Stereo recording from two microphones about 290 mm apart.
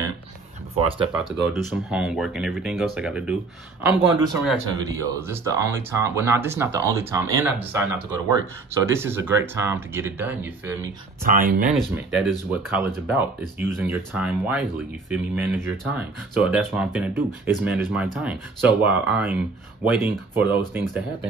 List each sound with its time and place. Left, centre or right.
0.7 s speech: centre
1.3 s speech: centre
3.8 s speech: centre
11.2 s speech: right
11.7 s speech: centre